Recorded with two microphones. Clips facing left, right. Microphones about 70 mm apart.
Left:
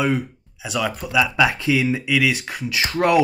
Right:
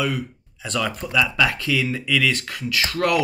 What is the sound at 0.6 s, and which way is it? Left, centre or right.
Speech, centre.